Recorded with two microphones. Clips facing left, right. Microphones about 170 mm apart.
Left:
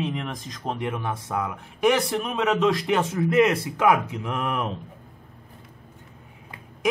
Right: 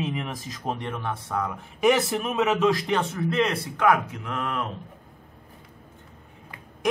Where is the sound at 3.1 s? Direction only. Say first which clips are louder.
Left 5 dB; 10° left (ahead or behind).